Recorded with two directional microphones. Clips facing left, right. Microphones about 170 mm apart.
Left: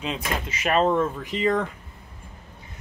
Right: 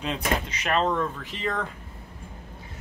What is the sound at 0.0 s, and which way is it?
Speech, 5° left (ahead or behind).